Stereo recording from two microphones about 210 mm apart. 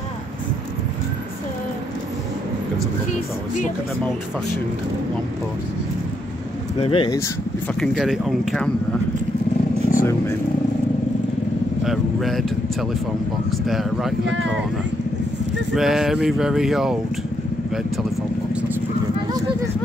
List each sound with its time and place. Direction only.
6.8 s speech: 25° left (ahead or behind)
7.6 s speech: centre (ahead or behind)
9.9 s vehicle: 40° left (ahead or behind)
11.8 s speech: centre (ahead or behind)
15.7 s speech: centre (ahead or behind)